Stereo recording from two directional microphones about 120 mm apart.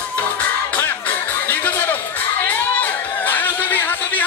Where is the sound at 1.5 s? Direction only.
20° left (ahead or behind).